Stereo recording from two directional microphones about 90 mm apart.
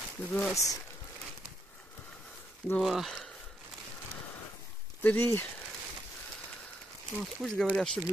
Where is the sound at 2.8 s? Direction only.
Centre (ahead or behind).